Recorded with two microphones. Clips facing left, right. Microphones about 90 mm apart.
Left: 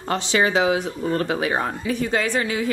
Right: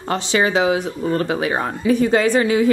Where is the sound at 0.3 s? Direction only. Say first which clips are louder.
Right 2 dB; 25° right (ahead or behind).